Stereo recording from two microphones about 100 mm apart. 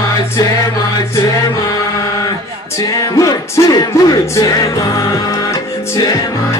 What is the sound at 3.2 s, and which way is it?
Music, 35° left (ahead or behind).